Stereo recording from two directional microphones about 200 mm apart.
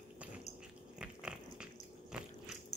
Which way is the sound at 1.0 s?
5° right (ahead or behind).